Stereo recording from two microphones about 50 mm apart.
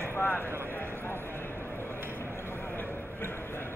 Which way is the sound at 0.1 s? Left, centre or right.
Left.